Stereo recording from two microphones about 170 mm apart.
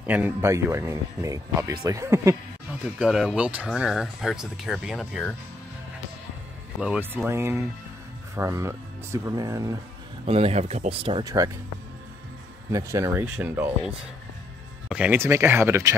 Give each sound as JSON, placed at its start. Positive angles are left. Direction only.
{"t": 0.0, "sound": "speech", "side_deg": -10}
{"t": 3.0, "sound": "speech", "side_deg": -5}
{"t": 6.8, "sound": "speech", "side_deg": -10}
{"t": 10.2, "sound": "speech", "side_deg": -35}
{"t": 11.2, "sound": "speech", "side_deg": -20}
{"t": 12.7, "sound": "speech", "side_deg": -20}